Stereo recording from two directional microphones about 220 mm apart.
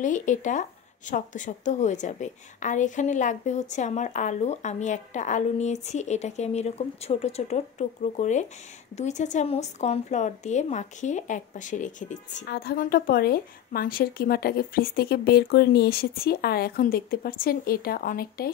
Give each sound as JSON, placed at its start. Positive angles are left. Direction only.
{"t": 0.0, "sound": "a woman's voice", "side_deg": 35}